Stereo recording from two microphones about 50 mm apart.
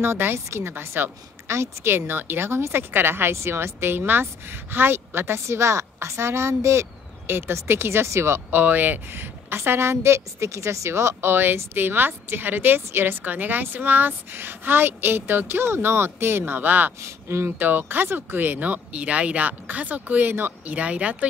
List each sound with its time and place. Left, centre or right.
0.0 s a woman's voice: right
7.2 s speech: right
8.5 s a woman's voice: right
16.5 s speech: right
17.0 s speech: right
17.5 s speech: right
18.9 s speech: right
20.6 s speech: right